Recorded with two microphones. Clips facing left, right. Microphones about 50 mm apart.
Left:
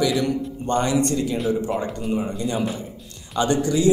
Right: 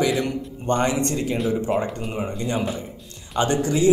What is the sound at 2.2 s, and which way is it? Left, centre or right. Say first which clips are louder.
A man's voice: left 1 dB; right.